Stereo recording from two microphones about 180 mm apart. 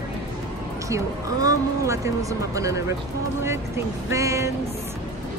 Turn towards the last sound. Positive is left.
turn(degrees=-15)  # may be behind; listen again after turning